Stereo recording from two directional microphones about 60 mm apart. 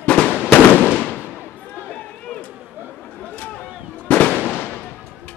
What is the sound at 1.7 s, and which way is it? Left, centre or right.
Run, left.